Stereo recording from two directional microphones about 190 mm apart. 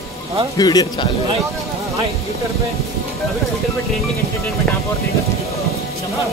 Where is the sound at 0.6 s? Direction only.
20° left (ahead or behind).